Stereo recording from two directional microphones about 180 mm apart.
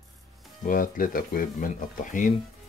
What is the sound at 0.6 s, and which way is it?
Speech, 50° left (ahead or behind).